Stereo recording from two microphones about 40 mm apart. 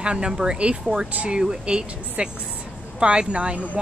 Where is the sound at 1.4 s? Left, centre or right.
Right.